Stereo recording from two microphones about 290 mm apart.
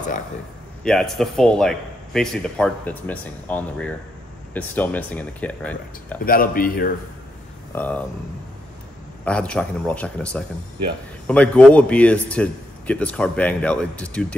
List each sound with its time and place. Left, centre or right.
0.8 s speech: centre
6.2 s speech: left
7.7 s speech: centre
9.2 s speech: centre